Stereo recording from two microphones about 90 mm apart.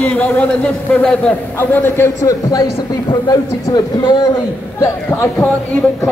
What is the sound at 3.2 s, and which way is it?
A man's voice, 50° left (ahead or behind).